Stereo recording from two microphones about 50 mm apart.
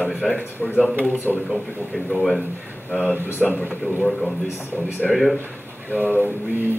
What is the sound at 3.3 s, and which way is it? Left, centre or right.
Speech, left.